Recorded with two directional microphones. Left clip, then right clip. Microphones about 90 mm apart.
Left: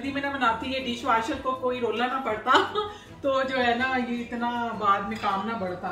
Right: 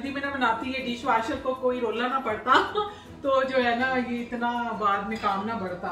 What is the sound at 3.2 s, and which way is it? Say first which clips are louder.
A woman's voice: right 1 dB; 30° left (ahead or behind).